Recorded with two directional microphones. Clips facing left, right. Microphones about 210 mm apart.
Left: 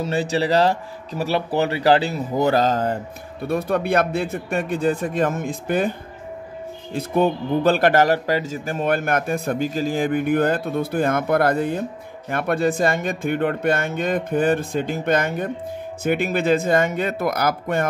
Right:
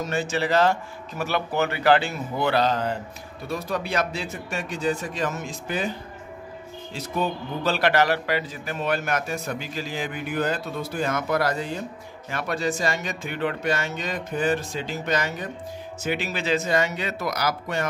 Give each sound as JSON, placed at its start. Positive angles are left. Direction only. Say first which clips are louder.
{"t": 0.0, "sound": "speech", "louder": "left 4 dB", "side_deg": 35}
{"t": 3.4, "sound": "speech", "louder": "left 7 dB", "side_deg": 55}